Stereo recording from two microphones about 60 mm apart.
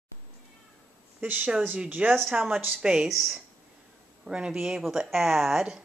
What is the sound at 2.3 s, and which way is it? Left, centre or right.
Speech, centre.